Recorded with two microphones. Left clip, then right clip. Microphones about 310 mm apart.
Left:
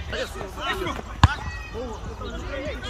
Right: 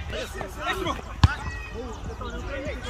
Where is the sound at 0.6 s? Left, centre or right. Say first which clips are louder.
Even; right.